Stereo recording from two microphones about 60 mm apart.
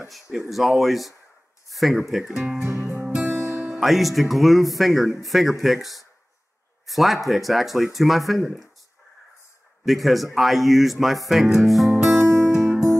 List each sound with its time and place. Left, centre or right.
0.1 s speech: centre
2.4 s music: centre
3.3 s music: right
3.8 s speech: centre
9.8 s speech: centre
12.1 s music: right